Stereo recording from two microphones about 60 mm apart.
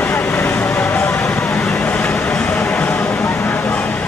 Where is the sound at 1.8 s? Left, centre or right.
Left.